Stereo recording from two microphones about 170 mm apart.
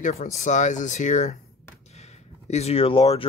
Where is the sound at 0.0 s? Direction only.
45° left (ahead or behind).